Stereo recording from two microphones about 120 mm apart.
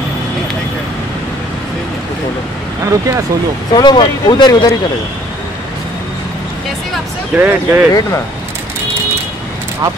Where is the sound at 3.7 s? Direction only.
40° left (ahead or behind).